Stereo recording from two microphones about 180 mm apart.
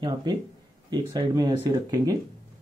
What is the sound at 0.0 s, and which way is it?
Speech, 25° right (ahead or behind).